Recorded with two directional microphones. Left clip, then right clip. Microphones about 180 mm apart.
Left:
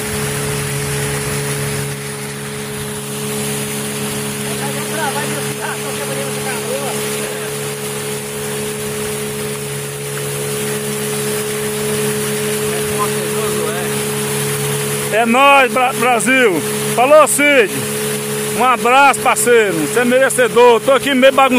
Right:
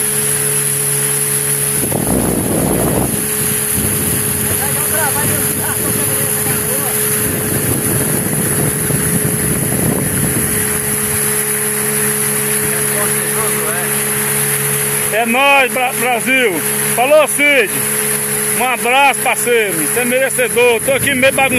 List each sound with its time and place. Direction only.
15.1 s speech: 10° left (ahead or behind)